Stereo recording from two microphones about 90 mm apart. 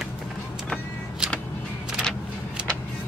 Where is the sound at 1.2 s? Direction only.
10° right (ahead or behind).